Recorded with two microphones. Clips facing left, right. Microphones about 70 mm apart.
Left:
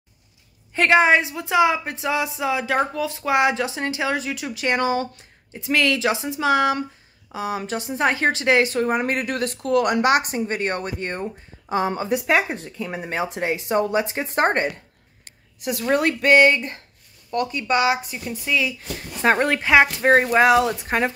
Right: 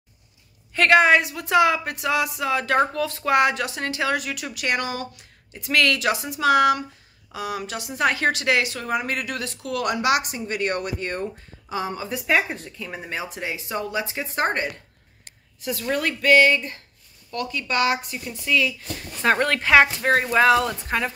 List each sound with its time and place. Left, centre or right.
0.7 s speech: left
12.3 s speech: left
13.1 s speech: left
15.6 s speech: left
20.1 s speech: left